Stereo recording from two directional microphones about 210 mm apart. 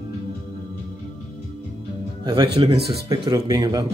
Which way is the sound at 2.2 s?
20° right (ahead or behind).